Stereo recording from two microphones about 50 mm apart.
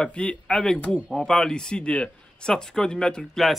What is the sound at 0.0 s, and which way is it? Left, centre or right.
Speech, left.